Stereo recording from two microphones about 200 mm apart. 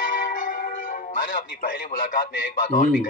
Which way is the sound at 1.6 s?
45° left (ahead or behind).